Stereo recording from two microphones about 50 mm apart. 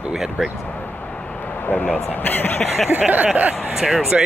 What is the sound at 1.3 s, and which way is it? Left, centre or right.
Vehicle, left.